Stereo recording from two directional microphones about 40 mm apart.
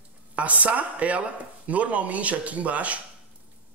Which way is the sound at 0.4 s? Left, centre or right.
Right.